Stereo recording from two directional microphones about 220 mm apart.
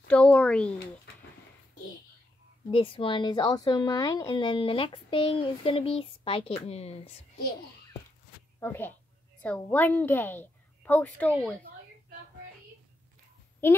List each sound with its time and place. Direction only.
0.1 s speech: 5° left (ahead or behind)
2.7 s a woman's voice: 25° left (ahead or behind)
8.5 s a woman's voice: 10° left (ahead or behind)
13.6 s a woman's voice: 10° left (ahead or behind)